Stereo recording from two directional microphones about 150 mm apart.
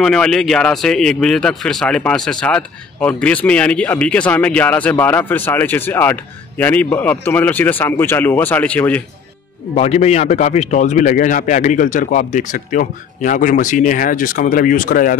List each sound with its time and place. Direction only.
0.0 s speech: 5° left (ahead or behind)
9.8 s a man's voice: 45° left (ahead or behind); by 15.1 s 65° left (ahead or behind)